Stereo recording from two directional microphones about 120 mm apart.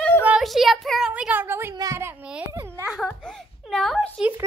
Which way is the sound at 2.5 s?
25° right (ahead or behind).